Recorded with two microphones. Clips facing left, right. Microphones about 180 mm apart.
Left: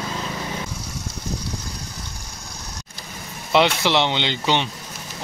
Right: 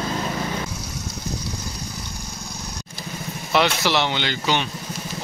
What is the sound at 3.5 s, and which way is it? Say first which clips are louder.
Speech: left 2 dB; 20° left (ahead or behind).